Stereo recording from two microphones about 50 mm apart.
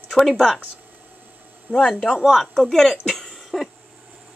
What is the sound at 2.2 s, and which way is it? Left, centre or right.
Speech, centre.